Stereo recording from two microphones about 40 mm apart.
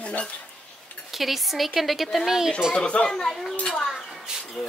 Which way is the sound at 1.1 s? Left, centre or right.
Centre.